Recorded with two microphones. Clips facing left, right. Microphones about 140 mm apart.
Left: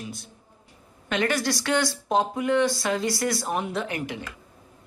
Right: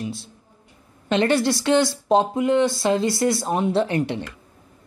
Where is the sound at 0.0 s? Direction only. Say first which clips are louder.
Right 7 dB; 25° right (ahead or behind).